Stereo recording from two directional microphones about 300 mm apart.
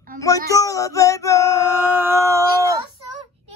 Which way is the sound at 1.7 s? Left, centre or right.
Centre.